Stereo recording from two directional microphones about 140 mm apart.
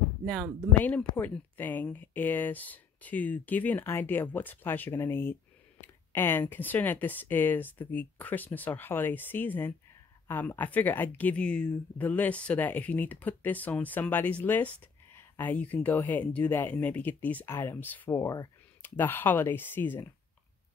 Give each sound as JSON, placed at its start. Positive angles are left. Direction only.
{"t": 0.2, "sound": "speech", "side_deg": 0}
{"t": 0.8, "sound": "speech", "side_deg": 10}
{"t": 18.2, "sound": "speech", "side_deg": 25}
{"t": 18.8, "sound": "speech", "side_deg": 15}